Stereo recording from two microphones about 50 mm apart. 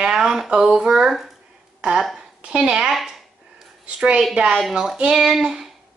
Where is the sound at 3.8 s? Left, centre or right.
Right.